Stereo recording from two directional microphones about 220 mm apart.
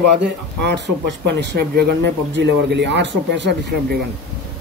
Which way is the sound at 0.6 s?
50° right (ahead or behind).